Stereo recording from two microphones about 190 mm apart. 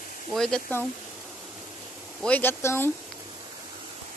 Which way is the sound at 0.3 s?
5° left (ahead or behind).